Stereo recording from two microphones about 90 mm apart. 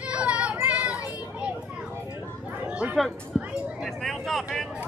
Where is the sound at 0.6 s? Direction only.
15° right (ahead or behind).